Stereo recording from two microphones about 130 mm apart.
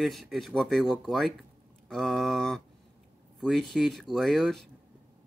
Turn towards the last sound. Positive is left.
turn(degrees=0)  # may be behind; listen again after turning